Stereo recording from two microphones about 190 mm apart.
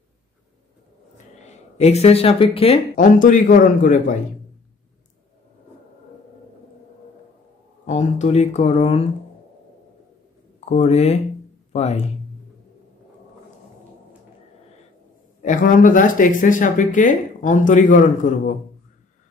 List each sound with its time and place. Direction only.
1.1 s a sound: 35° left (ahead or behind)
3.0 s speech: 45° left (ahead or behind)
7.8 s speech: 40° left (ahead or behind)
10.6 s speech: 35° left (ahead or behind)
15.4 s speech: 45° left (ahead or behind)